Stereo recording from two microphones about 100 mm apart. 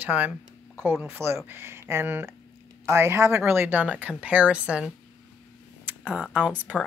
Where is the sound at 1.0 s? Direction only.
25° right (ahead or behind); by 4.9 s 10° right (ahead or behind).